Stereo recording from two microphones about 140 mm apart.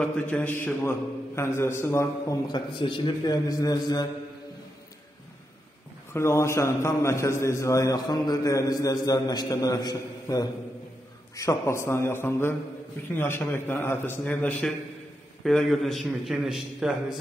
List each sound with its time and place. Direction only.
0.0 s a man's voice: 10° left (ahead or behind); by 4.1 s 25° left (ahead or behind)
6.1 s a man's voice: 20° left (ahead or behind); by 17.2 s 5° right (ahead or behind)